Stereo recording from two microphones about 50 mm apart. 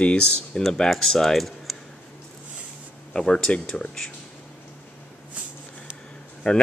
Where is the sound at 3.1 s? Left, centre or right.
Centre.